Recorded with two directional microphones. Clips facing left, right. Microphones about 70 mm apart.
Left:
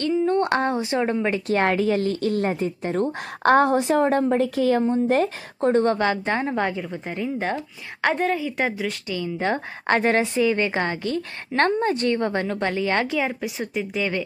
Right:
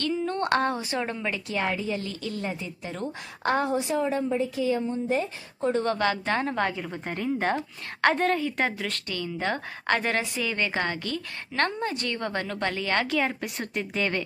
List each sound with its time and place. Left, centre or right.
0.0 s speech: left
1.5 s a woman's voice: left
5.9 s a woman's voice: left
6.8 s a woman's voice: centre; by 11.1 s left
11.1 s a woman's voice: left
13.2 s a woman's voice: centre